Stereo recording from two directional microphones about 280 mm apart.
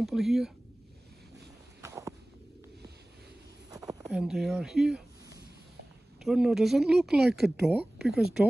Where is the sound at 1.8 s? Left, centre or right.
Centre.